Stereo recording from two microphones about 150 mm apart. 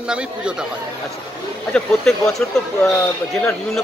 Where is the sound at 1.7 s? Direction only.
5° left (ahead or behind).